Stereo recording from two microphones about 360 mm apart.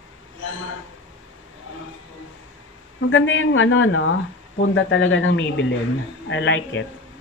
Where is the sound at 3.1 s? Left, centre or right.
Left.